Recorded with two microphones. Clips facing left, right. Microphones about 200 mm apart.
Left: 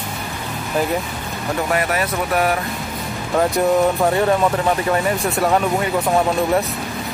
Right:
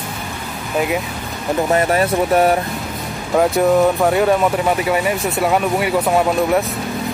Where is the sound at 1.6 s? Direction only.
30° right (ahead or behind).